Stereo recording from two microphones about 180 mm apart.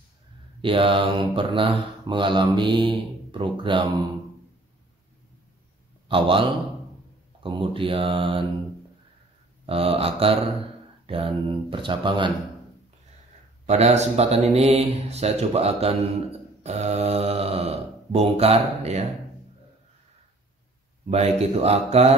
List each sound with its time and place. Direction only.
0.6 s speech: 30° right (ahead or behind)
6.0 s speech: 30° right (ahead or behind)
9.7 s speech: 30° right (ahead or behind)
13.7 s speech: 35° right (ahead or behind)
21.1 s speech: 35° right (ahead or behind)